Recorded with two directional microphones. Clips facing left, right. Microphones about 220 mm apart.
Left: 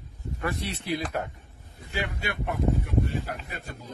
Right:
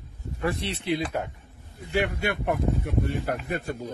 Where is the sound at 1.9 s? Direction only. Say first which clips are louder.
Right 7 dB; 60° right (ahead or behind).